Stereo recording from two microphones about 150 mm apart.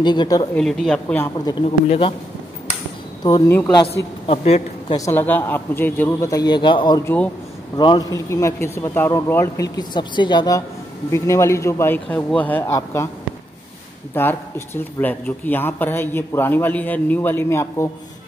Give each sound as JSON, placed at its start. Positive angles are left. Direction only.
{"t": 0.0, "sound": "a man's voice", "side_deg": 30}
{"t": 0.6, "sound": "speech", "side_deg": 5}
{"t": 1.6, "sound": "speech", "side_deg": 40}
{"t": 3.4, "sound": "speech", "side_deg": 15}
{"t": 4.8, "sound": "speech", "side_deg": 25}
{"t": 5.1, "sound": "a man's voice", "side_deg": 10}
{"t": 14.1, "sound": "speech", "side_deg": 15}